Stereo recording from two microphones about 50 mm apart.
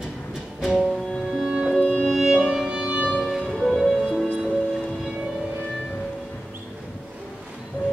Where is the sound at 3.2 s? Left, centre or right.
Centre.